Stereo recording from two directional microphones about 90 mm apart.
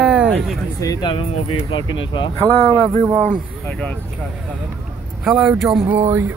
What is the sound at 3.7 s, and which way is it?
Speech, 15° left (ahead or behind).